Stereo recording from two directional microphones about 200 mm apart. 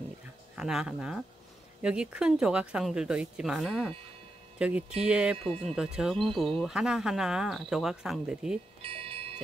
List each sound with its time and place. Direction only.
0.6 s speech: 5° right (ahead or behind)
8.8 s music: 25° right (ahead or behind)